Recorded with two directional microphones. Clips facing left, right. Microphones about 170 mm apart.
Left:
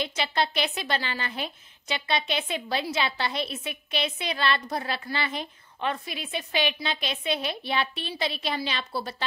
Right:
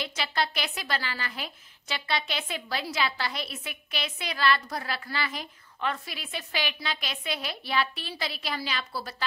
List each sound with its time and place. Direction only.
0.0 s a woman's voice: 20° left (ahead or behind)